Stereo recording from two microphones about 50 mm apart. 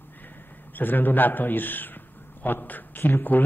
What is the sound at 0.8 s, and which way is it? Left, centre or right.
A man's voice, left.